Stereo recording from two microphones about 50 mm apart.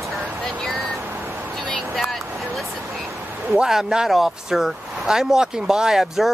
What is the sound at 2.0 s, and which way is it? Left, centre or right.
Vehicle, centre.